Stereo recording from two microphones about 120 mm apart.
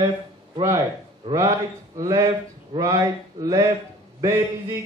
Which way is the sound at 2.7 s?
30° right (ahead or behind).